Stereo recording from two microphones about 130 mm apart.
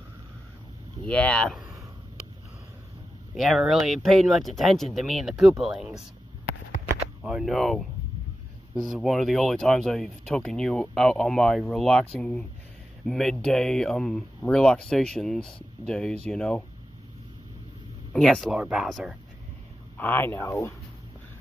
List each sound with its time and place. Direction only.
1.0 s speech: 10° left (ahead or behind)
3.3 s speech: centre (ahead or behind)
7.2 s speech: 5° right (ahead or behind)
18.1 s speech: centre (ahead or behind)
20.0 s speech: 15° left (ahead or behind)